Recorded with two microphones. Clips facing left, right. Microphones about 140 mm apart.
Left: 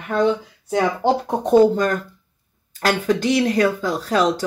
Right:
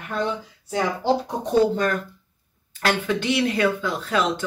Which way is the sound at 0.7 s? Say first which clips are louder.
Left 3 dB; 55° left (ahead or behind).